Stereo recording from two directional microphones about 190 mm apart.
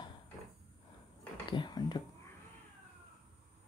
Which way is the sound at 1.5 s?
25° left (ahead or behind).